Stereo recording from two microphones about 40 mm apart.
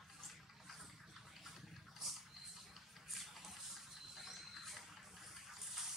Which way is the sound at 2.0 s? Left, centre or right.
Centre.